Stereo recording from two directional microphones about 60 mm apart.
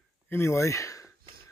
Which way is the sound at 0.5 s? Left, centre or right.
Left.